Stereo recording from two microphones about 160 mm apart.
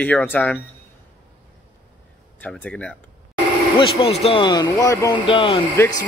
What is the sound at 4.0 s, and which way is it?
Speech, 40° left (ahead or behind).